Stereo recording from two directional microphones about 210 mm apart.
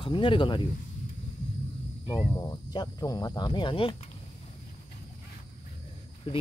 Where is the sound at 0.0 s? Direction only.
25° left (ahead or behind).